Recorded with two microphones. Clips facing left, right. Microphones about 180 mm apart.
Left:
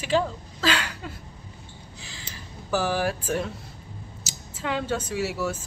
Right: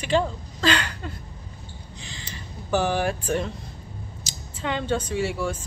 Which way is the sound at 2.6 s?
Centre (ahead or behind).